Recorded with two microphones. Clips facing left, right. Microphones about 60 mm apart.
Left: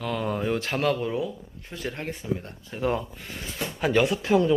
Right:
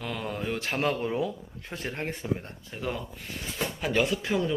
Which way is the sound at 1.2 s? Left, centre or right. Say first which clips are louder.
Right 1 dB; right.